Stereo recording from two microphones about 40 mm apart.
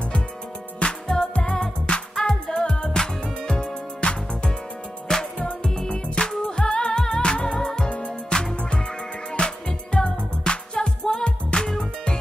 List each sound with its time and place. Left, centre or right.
0.7 s music: left